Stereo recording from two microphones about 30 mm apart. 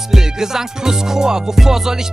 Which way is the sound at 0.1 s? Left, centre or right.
Centre.